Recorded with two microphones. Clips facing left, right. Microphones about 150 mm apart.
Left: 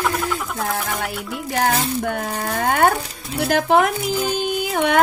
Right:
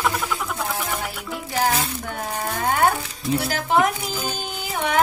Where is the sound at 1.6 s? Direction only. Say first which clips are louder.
Left 4 dB; 60° left (ahead or behind).